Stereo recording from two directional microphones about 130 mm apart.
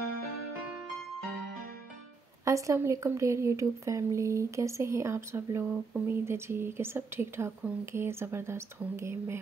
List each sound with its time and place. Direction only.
2.4 s speech: 25° right (ahead or behind)